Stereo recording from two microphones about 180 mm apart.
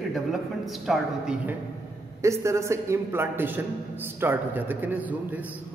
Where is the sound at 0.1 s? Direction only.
Centre (ahead or behind).